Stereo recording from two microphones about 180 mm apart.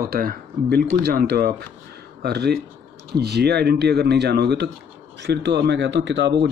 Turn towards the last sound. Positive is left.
turn(degrees=-75)  # may be behind; listen again after turning